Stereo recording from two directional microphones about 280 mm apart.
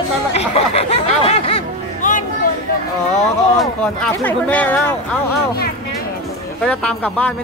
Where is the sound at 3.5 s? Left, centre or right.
Centre.